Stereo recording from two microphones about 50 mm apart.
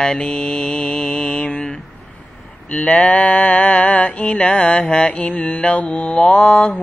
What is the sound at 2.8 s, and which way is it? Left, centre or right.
Music, left.